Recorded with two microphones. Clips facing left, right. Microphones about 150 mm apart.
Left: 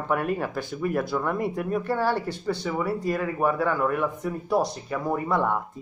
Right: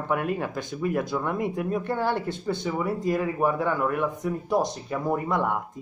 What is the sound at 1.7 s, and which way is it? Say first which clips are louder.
Speech: left 3 dB; 20° right (ahead or behind).